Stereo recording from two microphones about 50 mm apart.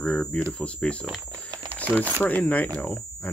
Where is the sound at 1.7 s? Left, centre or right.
Left.